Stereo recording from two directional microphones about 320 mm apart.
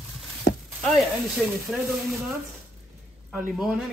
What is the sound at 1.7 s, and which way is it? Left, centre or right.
Speech, centre.